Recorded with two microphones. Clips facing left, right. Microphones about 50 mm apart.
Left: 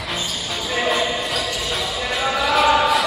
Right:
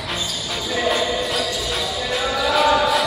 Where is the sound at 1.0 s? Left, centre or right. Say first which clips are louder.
Right 1 dB; left.